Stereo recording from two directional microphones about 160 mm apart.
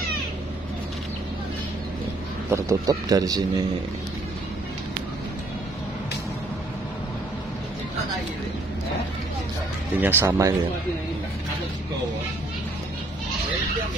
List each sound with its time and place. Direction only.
2.5 s a man's voice: 20° right (ahead or behind)
9.9 s speech: 15° right (ahead or behind)